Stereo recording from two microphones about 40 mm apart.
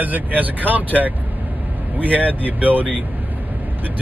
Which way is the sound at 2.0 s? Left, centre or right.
Right.